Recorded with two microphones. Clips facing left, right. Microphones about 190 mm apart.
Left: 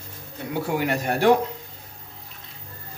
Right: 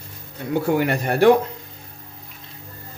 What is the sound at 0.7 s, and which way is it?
Speech, 60° right (ahead or behind).